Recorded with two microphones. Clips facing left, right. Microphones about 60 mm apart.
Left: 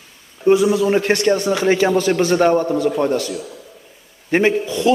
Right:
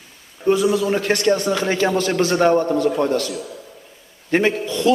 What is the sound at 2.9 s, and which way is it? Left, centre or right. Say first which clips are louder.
Speech: left 1 dB; centre.